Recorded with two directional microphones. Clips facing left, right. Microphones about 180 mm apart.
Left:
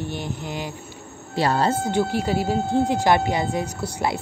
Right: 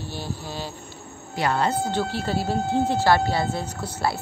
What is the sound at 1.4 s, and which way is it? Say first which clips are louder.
Speech: left 2 dB; 30° left (ahead or behind).